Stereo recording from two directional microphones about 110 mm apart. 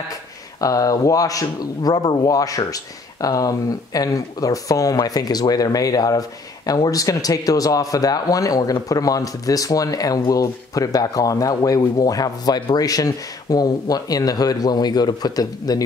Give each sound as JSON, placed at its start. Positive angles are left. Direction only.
{"t": 0.6, "sound": "speech", "side_deg": 30}